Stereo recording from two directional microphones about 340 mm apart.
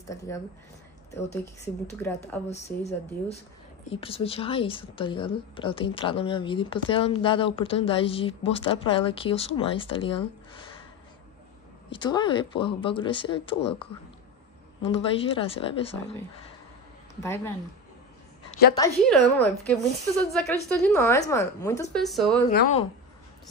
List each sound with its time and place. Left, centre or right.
0.1 s a woman's voice: centre
2.8 s a woman's voice: centre
11.9 s a woman's voice: centre
14.8 s a woman's voice: centre
17.2 s a woman's voice: centre
18.5 s a sound: left
18.8 s a woman's voice: centre
22.5 s speech: left